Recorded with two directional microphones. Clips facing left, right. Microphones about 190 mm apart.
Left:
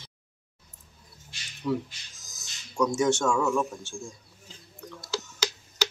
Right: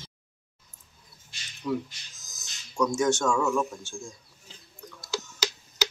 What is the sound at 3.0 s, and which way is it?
Speech, 10° left (ahead or behind).